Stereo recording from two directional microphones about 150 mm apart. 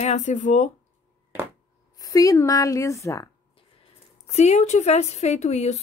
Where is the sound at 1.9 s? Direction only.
25° left (ahead or behind).